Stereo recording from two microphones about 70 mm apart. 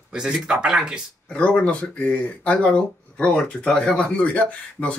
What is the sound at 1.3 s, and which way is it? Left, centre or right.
Speech, centre.